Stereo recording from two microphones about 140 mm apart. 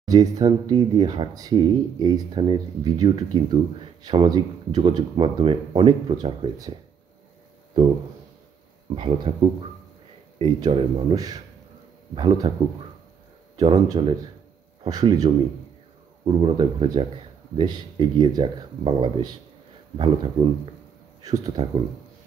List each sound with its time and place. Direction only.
0.0 s speech: 30° right (ahead or behind)
8.9 s speech: 40° right (ahead or behind)
12.2 s speech: 35° right (ahead or behind)
13.6 s speech: 30° right (ahead or behind)
16.3 s speech: 40° right (ahead or behind)